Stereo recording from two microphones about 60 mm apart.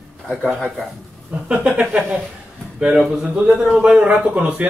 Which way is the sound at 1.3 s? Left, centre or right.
Centre.